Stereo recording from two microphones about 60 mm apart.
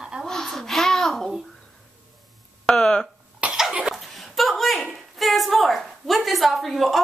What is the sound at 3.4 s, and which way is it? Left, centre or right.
Cough, right.